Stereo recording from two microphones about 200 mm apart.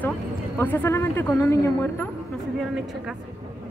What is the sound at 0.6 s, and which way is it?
Speech, 10° left (ahead or behind).